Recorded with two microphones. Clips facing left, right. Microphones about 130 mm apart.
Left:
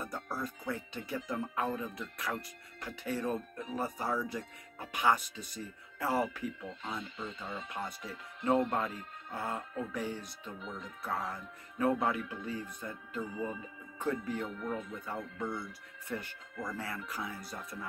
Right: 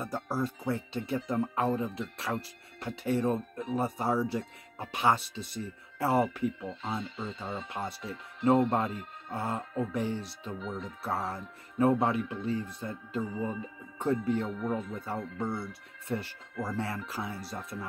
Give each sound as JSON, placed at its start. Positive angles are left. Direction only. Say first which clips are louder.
{"t": 0.0, "sound": "speech", "louder": "right 6 dB", "side_deg": -25}